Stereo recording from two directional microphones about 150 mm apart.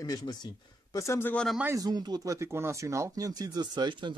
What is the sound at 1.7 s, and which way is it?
Speech, 25° right (ahead or behind).